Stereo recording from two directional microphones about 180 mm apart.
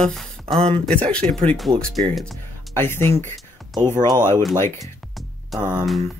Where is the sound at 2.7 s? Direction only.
10° left (ahead or behind).